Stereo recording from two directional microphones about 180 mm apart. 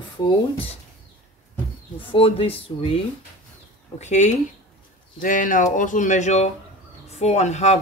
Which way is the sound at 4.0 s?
40° left (ahead or behind).